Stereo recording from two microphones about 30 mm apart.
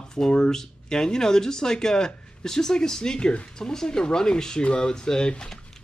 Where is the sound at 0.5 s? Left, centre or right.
Centre.